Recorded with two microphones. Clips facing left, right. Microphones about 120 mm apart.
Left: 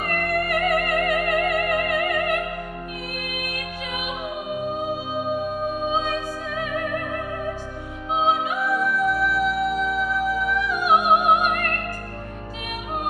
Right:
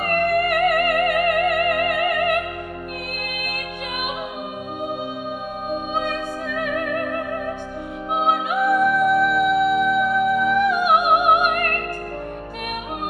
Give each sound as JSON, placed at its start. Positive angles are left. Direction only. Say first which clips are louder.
{"t": 0.0, "sound": "music", "louder": "right 5 dB", "side_deg": -55}
{"t": 5.7, "sound": "music", "louder": "right 4 dB", "side_deg": -60}
{"t": 8.1, "sound": "music", "louder": "right 1 dB", "side_deg": -55}